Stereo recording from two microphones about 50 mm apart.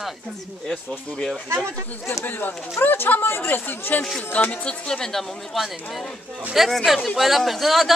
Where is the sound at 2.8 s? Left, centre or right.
Left.